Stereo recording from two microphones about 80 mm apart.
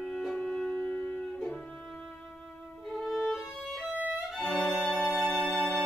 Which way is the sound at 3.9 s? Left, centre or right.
Centre.